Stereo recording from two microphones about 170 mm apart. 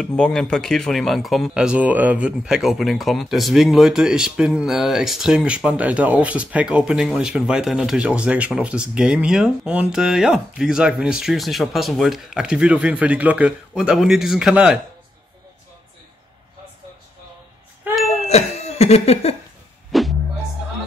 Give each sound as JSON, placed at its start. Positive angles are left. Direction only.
{"t": 0.0, "sound": "speech", "side_deg": 5}
{"t": 18.2, "sound": "a sound", "side_deg": 40}
{"t": 19.9, "sound": "music", "side_deg": 0}